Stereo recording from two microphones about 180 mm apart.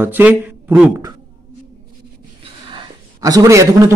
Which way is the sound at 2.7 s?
20° right (ahead or behind).